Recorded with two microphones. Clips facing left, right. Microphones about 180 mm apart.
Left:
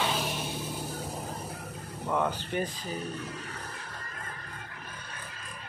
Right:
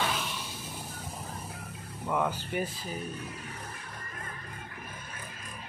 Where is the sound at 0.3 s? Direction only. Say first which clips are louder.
Left 6 dB; 55° left (ahead or behind).